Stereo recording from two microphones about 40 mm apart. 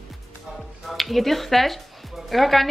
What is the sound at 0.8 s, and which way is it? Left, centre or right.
A woman's voice, centre.